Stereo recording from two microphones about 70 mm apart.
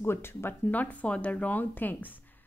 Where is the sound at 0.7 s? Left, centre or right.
Left.